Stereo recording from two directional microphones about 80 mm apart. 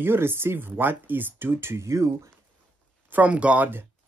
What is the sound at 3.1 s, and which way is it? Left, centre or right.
Speech, centre.